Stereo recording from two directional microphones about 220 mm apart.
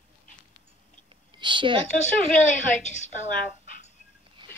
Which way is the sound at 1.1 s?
20° right (ahead or behind).